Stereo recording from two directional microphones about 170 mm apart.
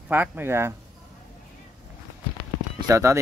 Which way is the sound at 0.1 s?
10° right (ahead or behind).